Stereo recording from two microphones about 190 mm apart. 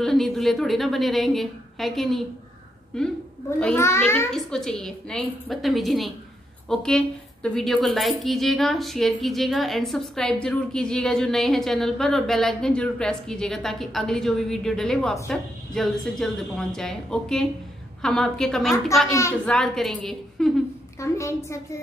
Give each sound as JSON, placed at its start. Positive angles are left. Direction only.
{"t": 0.0, "sound": "speech", "side_deg": 0}
{"t": 3.4, "sound": "a child's voice", "side_deg": 10}
{"t": 21.0, "sound": "a child's voice", "side_deg": 15}